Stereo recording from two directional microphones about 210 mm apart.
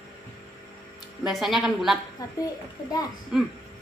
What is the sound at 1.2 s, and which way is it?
Speech, centre (ahead or behind).